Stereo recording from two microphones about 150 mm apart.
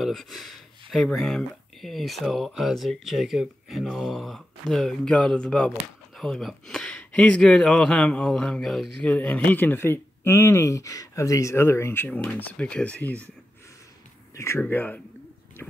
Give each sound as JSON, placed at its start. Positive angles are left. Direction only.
{"t": 0.0, "sound": "a sound", "side_deg": 0}
{"t": 1.0, "sound": "speech", "side_deg": 5}
{"t": 14.3, "sound": "speech", "side_deg": 20}